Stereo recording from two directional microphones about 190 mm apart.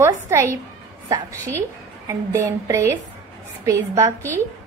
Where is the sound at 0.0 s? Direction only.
15° right (ahead or behind).